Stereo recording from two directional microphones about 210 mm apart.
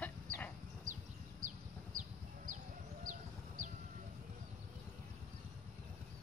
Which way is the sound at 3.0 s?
40° right (ahead or behind).